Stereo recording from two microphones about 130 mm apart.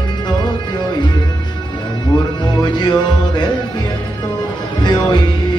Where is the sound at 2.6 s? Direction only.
35° left (ahead or behind).